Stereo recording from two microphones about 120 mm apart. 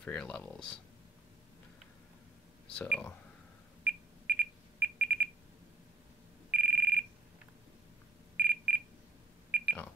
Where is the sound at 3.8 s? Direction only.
15° right (ahead or behind).